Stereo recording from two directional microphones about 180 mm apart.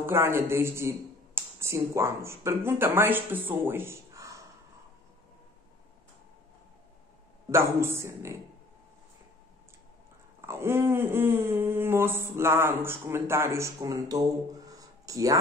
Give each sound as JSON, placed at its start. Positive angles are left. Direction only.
{"t": 0.0, "sound": "speech", "side_deg": -15}
{"t": 7.4, "sound": "speech", "side_deg": -15}
{"t": 10.4, "sound": "speech", "side_deg": -15}
{"t": 14.7, "sound": "a sound", "side_deg": -20}